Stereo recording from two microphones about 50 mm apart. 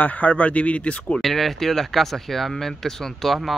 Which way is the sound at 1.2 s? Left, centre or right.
Centre.